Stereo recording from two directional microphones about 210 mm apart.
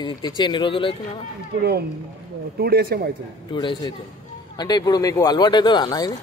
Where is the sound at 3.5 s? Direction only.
20° left (ahead or behind).